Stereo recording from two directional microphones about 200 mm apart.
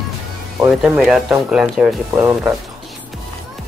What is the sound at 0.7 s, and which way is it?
Speech, 5° right (ahead or behind).